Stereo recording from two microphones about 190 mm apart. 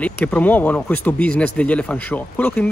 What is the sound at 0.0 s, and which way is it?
Speech, 5° left (ahead or behind).